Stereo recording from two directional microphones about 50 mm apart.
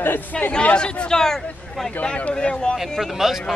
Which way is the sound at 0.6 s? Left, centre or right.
Left.